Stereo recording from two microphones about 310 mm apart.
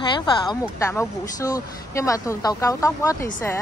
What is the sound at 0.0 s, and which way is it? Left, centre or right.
Speech, centre.